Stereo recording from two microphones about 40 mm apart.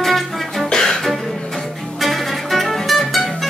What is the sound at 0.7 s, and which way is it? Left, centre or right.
Music, centre.